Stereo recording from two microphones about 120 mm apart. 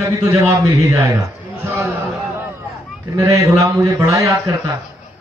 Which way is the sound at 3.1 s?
25° right (ahead or behind).